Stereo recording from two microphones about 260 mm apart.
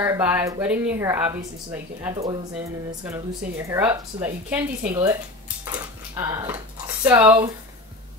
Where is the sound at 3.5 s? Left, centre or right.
Centre.